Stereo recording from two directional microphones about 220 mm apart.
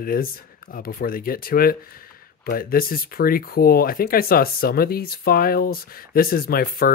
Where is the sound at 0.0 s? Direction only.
40° left (ahead or behind).